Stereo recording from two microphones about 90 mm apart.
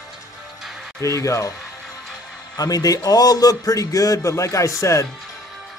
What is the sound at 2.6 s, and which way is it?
A man's voice, 45° left (ahead or behind).